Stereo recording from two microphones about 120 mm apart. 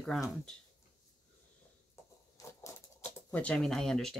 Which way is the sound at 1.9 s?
25° left (ahead or behind).